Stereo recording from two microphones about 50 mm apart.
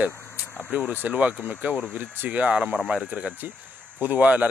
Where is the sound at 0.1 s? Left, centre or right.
Left.